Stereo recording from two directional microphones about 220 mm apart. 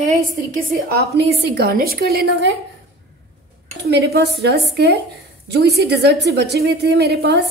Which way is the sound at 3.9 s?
45° right (ahead or behind).